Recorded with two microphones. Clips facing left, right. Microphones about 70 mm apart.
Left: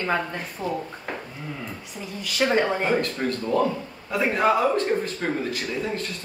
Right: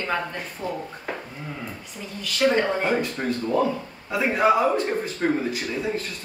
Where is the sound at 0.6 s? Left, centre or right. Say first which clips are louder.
Left 2 dB; left.